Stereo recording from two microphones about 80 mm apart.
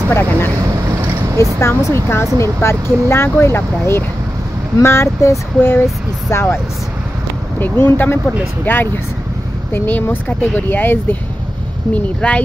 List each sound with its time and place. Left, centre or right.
0.1 s speech: left
1.6 s speech: left; by 12.4 s centre